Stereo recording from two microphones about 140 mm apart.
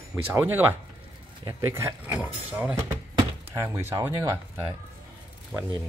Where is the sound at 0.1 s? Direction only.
15° right (ahead or behind).